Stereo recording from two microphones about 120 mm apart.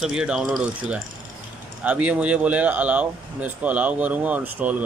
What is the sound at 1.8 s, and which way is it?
Speech, 10° right (ahead or behind).